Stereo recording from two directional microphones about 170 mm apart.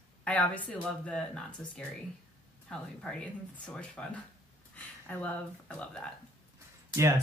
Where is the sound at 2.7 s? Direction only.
5° left (ahead or behind).